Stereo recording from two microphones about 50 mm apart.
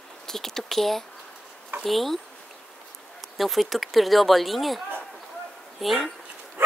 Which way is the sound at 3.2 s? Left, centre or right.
Centre.